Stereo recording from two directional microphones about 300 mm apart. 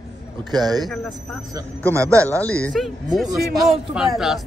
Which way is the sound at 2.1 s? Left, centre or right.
Centre.